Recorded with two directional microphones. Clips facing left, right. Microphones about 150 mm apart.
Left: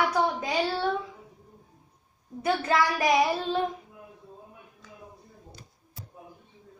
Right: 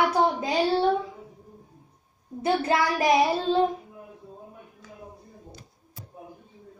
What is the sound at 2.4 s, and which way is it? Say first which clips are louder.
A child's voice: right 2 dB; 30° right (ahead or behind).